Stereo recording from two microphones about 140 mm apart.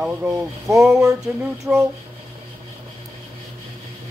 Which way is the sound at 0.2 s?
15° right (ahead or behind).